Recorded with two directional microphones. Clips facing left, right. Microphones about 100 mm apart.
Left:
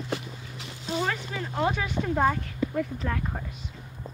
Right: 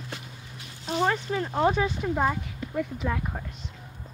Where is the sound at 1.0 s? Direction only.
30° right (ahead or behind).